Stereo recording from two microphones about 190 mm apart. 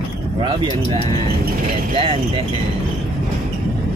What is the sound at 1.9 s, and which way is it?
Speech, 30° right (ahead or behind).